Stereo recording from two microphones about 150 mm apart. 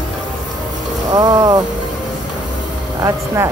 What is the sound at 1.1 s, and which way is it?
Speech, 25° right (ahead or behind).